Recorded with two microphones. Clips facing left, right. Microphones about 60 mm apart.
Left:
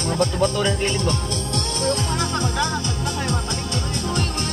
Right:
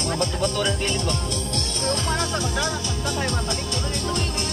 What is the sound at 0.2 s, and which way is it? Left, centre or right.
Speech, left.